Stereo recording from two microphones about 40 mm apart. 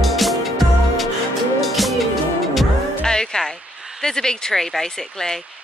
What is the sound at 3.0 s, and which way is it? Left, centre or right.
Music, centre.